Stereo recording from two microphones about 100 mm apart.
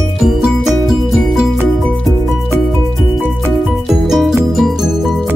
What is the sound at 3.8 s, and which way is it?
Music, 5° right (ahead or behind).